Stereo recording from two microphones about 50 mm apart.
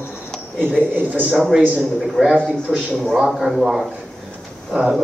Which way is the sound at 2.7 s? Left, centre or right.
Right.